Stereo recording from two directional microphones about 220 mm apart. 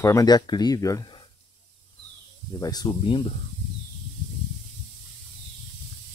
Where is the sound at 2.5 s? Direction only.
15° left (ahead or behind).